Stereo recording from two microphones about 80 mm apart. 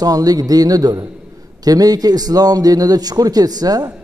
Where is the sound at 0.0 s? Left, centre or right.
Right.